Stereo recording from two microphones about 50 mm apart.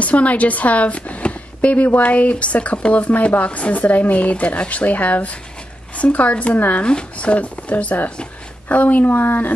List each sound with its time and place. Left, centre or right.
0.0 s speech: left